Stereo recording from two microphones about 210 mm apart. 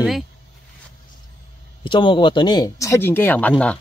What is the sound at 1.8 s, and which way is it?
Speech, 25° left (ahead or behind).